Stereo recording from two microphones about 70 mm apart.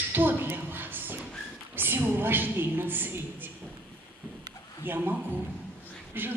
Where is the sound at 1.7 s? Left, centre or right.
Right.